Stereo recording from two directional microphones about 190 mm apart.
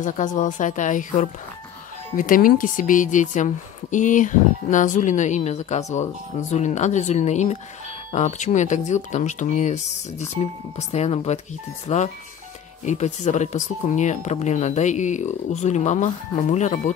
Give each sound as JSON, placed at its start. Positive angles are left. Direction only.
{"t": 0.0, "sound": "speech", "side_deg": 40}